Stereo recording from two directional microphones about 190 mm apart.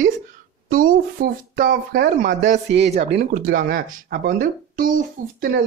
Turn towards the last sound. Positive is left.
turn(degrees=-45)  # may be behind; listen again after turning